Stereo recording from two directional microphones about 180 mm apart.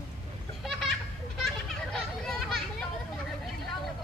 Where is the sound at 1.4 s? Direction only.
5° left (ahead or behind).